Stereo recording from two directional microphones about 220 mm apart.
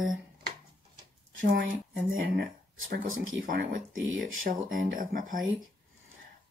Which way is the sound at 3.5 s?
40° right (ahead or behind).